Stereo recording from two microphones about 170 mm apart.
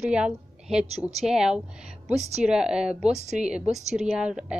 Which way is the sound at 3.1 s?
40° right (ahead or behind).